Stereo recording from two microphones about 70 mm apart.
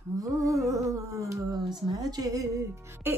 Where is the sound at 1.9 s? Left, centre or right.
Right.